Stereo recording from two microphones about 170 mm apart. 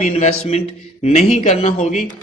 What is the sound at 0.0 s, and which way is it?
A man's voice, 40° left (ahead or behind).